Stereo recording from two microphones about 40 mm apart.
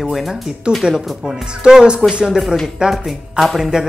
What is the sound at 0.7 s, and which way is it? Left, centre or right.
Speech, right.